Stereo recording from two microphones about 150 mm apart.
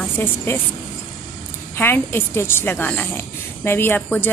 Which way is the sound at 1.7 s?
15° left (ahead or behind).